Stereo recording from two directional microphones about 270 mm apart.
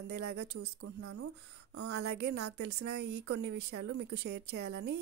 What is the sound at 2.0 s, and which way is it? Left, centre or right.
Speech, right.